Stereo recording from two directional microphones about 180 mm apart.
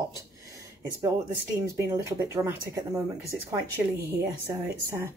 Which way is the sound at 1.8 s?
15° right (ahead or behind).